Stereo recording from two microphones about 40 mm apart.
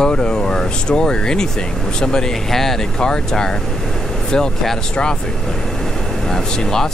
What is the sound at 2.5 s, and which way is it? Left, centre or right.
Speech, centre.